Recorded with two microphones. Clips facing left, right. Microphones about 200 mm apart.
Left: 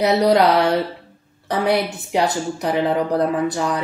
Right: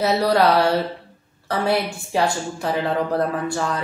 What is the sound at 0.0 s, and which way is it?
A woman's voice, 15° left (ahead or behind).